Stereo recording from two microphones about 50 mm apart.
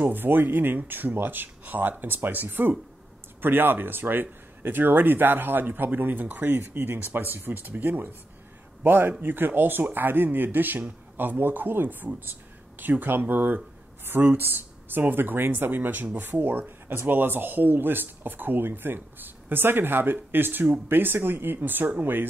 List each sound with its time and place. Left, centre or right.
0.1 s speech: right